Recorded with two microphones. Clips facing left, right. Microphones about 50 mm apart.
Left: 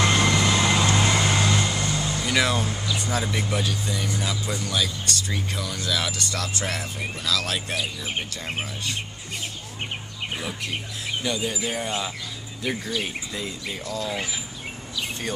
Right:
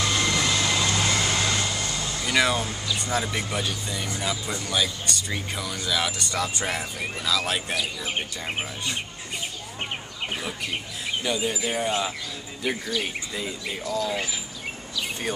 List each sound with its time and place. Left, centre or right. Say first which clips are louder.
0.0 s vehicle: left 4 dB; left
0.3 s vehicle: left 3 dB; centre
2.2 s speech: right 1 dB; centre
11.2 s speech: right 1 dB; centre